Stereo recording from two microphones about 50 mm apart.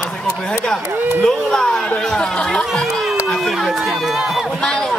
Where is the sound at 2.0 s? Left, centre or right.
Centre.